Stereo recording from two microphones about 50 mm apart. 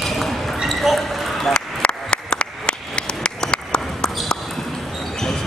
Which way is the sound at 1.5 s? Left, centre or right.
Centre.